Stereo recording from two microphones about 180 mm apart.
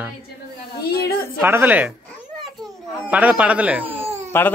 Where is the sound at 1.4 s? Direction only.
10° right (ahead or behind).